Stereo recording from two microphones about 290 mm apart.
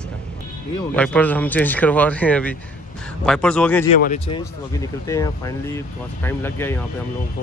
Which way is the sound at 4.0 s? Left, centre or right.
Left.